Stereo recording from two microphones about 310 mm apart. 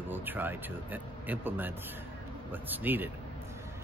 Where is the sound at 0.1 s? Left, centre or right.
Centre.